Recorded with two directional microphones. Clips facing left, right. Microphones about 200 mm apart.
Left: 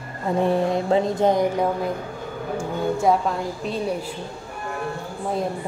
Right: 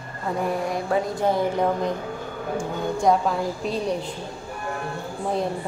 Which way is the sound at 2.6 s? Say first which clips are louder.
Left 2 dB; 5° left (ahead or behind).